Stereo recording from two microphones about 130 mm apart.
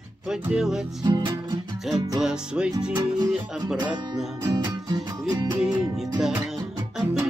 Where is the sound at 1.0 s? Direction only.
35° right (ahead or behind).